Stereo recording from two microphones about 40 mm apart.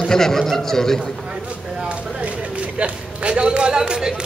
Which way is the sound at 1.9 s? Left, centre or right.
Right.